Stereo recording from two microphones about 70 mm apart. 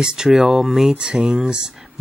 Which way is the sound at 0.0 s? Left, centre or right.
Centre.